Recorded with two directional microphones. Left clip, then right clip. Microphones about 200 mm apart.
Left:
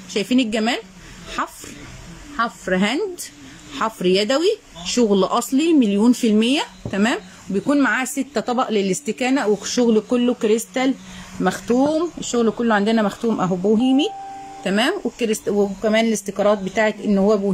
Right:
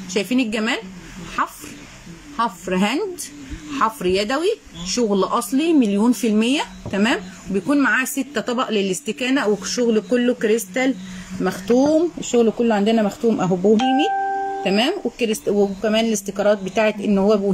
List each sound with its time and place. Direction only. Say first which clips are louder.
0.1 s speech: left 1 dB; centre (ahead or behind)
2.3 s a woman's voice: left 1 dB; 10° right (ahead or behind)
13.8 s speech: right 1 dB; 40° right (ahead or behind)
14.6 s a woman's voice: left 3 dB; 5° right (ahead or behind)